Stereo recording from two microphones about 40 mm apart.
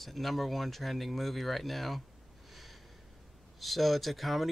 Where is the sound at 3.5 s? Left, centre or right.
Centre.